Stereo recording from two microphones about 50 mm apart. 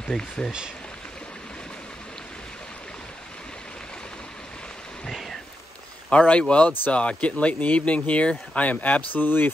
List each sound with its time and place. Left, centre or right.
0.1 s speech: centre
6.0 s speech: left